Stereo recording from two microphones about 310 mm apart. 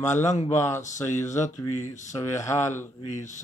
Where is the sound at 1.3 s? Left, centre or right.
Left.